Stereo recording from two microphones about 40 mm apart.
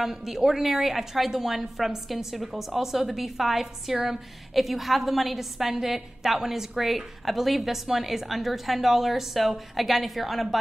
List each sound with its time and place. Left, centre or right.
0.0 s a woman's voice: centre